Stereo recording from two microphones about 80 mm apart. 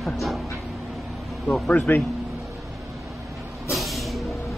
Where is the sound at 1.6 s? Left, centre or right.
Centre.